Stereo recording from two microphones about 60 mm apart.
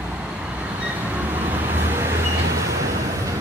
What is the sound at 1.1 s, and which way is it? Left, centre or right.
Vehicle, right.